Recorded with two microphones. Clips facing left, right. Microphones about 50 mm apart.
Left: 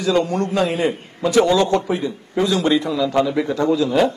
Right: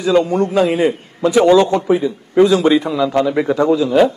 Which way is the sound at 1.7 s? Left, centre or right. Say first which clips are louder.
Right 4 dB; centre.